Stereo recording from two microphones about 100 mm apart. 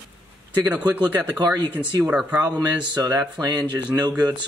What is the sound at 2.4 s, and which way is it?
Speech, 45° right (ahead or behind).